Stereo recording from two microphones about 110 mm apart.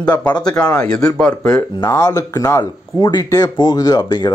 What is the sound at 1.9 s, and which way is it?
Speech, 30° left (ahead or behind).